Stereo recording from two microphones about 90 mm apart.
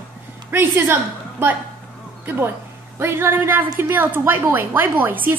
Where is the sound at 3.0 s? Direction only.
30° right (ahead or behind).